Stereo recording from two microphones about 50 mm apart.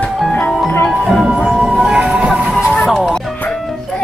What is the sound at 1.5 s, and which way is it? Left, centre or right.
Music, centre.